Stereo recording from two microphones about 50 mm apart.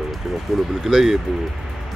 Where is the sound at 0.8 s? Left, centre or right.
Centre.